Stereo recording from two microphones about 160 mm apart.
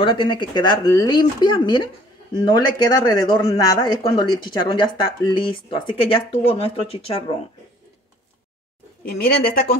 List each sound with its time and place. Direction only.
0.0 s speech: 30° left (ahead or behind)
9.1 s speech: 70° left (ahead or behind)